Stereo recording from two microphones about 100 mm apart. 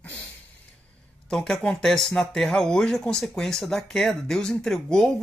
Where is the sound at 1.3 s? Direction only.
5° left (ahead or behind).